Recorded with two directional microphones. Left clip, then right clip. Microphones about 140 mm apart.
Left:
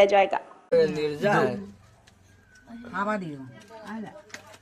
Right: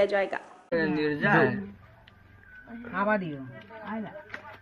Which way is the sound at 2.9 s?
20° left (ahead or behind).